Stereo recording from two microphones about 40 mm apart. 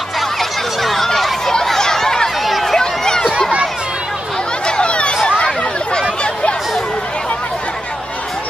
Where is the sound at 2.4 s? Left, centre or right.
Centre.